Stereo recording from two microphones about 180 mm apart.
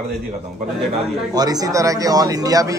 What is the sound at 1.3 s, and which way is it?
A man's voice, 20° right (ahead or behind).